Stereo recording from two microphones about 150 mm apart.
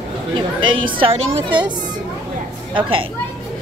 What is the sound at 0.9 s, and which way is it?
Speech, 40° right (ahead or behind).